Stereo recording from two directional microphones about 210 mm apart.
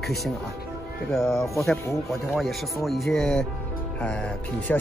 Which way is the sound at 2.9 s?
Centre (ahead or behind).